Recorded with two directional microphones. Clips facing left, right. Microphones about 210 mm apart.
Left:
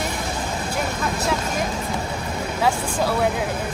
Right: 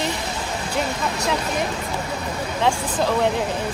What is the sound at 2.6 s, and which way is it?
Speech, 5° left (ahead or behind).